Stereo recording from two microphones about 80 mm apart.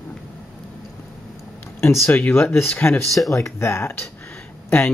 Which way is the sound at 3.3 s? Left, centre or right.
Left.